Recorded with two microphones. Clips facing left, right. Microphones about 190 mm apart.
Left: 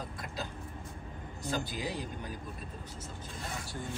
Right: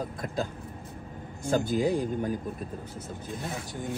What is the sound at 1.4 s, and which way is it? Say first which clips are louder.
Speech: right 10 dB; 50° right (ahead or behind).